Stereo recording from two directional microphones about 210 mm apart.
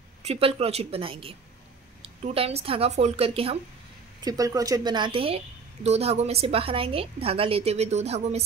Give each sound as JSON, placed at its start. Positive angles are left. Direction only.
{"t": 0.2, "sound": "a woman's voice", "side_deg": -30}
{"t": 4.2, "sound": "a woman's voice", "side_deg": -15}